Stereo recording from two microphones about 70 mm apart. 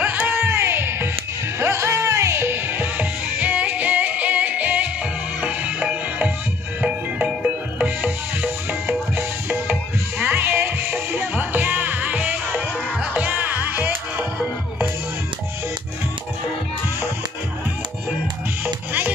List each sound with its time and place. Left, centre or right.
0.0 s music: right